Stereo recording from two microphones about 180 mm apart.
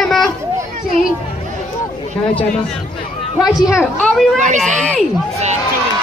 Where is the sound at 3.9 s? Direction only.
5° left (ahead or behind).